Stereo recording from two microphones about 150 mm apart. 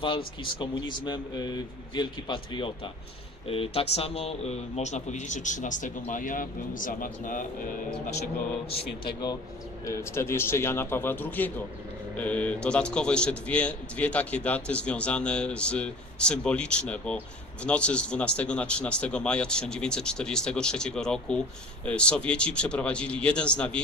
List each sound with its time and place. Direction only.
0.4 s a man's voice: 30° left (ahead or behind); by 7.7 s 65° left (ahead or behind)
8.6 s speech: 40° left (ahead or behind)
9.8 s a man's voice: 20° left (ahead or behind)